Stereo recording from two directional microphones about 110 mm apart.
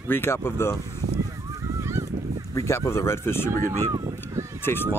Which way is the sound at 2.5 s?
25° left (ahead or behind).